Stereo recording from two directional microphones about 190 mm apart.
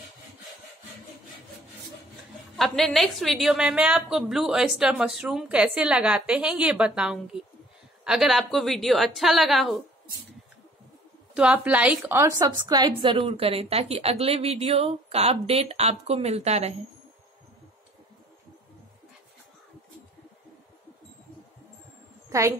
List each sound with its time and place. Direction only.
2.5 s a woman's voice: centre (ahead or behind)
11.3 s a woman's voice: 5° right (ahead or behind); by 16.7 s 35° right (ahead or behind)